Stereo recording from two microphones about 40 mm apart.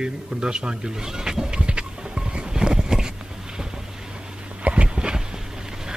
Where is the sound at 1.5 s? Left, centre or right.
Right.